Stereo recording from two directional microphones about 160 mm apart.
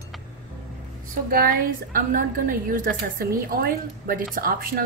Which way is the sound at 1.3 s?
65° right (ahead or behind).